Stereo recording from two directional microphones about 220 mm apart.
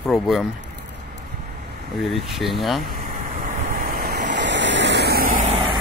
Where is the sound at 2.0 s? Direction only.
Centre (ahead or behind).